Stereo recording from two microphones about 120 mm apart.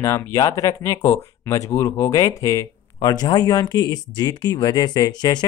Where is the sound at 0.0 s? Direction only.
25° left (ahead or behind).